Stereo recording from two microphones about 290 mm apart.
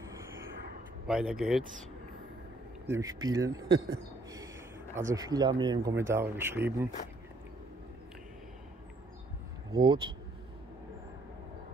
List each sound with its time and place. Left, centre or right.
1.0 s speech: centre
2.9 s speech: centre
4.9 s speech: centre
9.7 s speech: centre